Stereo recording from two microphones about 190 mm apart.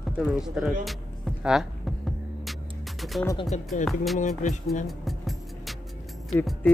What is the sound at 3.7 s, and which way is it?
Speech, 40° left (ahead or behind).